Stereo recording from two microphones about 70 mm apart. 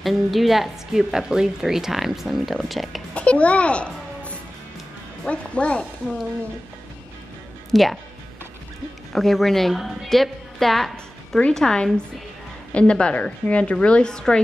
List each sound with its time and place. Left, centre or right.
0.0 s a woman's voice: centre
3.2 s a child's voice: centre
7.7 s a woman's voice: centre
9.1 s a woman's voice: centre